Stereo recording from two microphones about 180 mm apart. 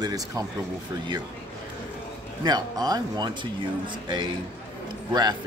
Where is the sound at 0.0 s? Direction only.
20° right (ahead or behind).